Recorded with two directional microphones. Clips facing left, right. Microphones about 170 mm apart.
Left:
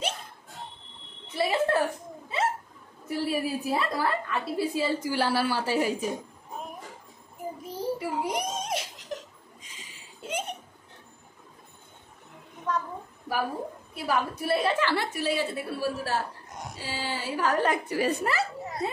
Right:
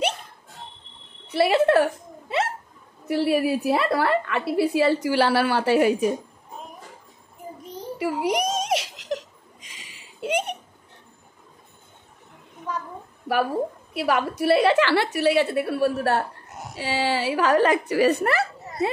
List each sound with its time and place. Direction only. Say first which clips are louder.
1.3 s hiccup: right 7 dB; 75° right (ahead or behind)
3.1 s a woman's voice: right 7 dB; 70° right (ahead or behind)
8.0 s giggle: right 6 dB; 85° right
12.7 s a sound: left 2 dB; 10° right (ahead or behind)
13.9 s a woman's voice: right 5 dB; 75° right (ahead or behind)
16.4 s a sound: right 1 dB; 5° right (ahead or behind)
16.7 s a woman's voice: right 10 dB; 75° right (ahead or behind)